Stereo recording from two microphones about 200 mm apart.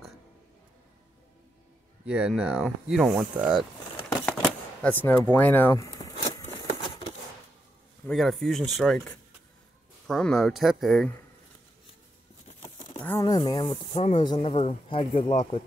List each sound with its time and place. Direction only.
2.0 s speech: 5° right (ahead or behind)
4.3 s shuffling cards: 5° left (ahead or behind)
5.3 s a sound: 10° left (ahead or behind)
8.1 s speech: centre (ahead or behind)
13.0 s speech: 15° left (ahead or behind)